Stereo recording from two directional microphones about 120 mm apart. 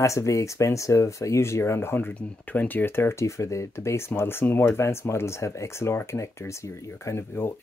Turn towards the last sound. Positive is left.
turn(degrees=25)  # may be behind; listen again after turning